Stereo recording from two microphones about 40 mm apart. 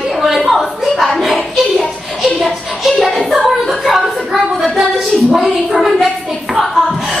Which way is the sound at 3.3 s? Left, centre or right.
Centre.